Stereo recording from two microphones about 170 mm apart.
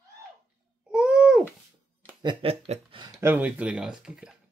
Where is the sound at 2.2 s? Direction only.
35° right (ahead or behind).